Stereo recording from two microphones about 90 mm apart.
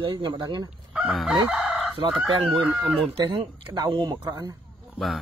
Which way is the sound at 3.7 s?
55° right (ahead or behind).